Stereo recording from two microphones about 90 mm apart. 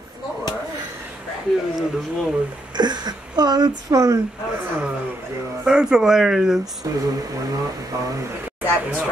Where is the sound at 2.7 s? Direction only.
50° right (ahead or behind).